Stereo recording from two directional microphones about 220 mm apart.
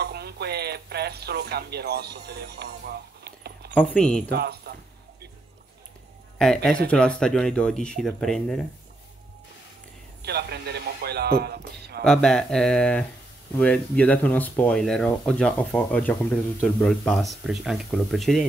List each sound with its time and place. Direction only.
0.0 s radio: 45° right (ahead or behind)
2.2 s a sound: 50° right (ahead or behind)
3.7 s speech: 5° left (ahead or behind)
4.3 s speech: 45° right (ahead or behind)
6.3 s speech: 5° left (ahead or behind)
10.2 s a man's voice: 50° right (ahead or behind)
12.0 s speech: 5° left (ahead or behind)